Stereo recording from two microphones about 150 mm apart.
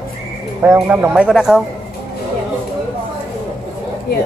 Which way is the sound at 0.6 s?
15° right (ahead or behind).